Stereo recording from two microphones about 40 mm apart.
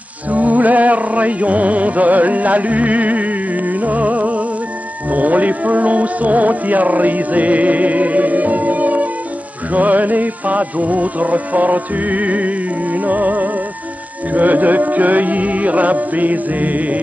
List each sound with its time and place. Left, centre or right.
0.3 s music: right